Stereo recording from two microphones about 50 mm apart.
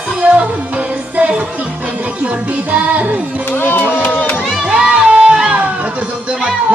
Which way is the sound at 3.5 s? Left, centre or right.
Left.